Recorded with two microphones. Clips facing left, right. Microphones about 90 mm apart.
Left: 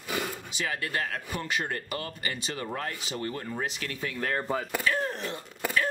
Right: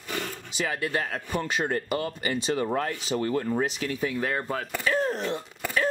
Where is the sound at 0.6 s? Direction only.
25° right (ahead or behind).